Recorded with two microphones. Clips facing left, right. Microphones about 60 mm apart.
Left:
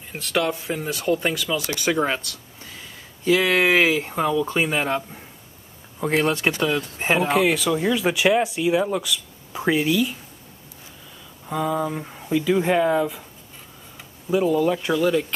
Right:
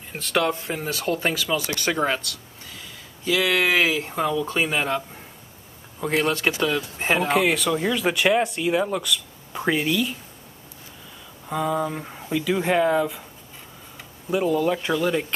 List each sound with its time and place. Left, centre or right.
0.1 s speech: centre
3.3 s speech: left
4.1 s speech: centre
4.6 s speech: centre
6.0 s speech: left
7.2 s speech: centre
11.4 s speech: centre
14.3 s speech: centre